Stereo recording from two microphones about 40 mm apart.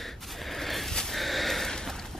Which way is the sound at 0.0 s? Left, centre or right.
Centre.